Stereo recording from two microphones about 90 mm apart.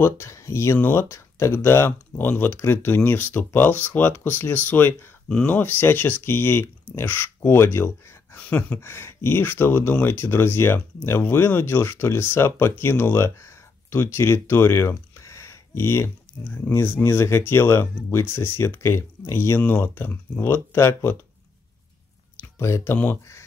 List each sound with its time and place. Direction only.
0.0 s speech: 30° left (ahead or behind)
5.3 s a sound: 10° left (ahead or behind)
5.6 s speech: 25° left (ahead or behind)
8.4 s a sound: 20° left (ahead or behind)
8.8 s speech: 30° left (ahead or behind)
22.4 s speech: 30° left (ahead or behind)